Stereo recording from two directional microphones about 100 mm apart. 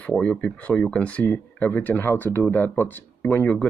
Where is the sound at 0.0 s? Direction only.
15° left (ahead or behind).